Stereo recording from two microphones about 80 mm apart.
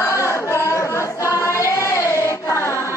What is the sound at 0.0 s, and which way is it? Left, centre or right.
Music, left.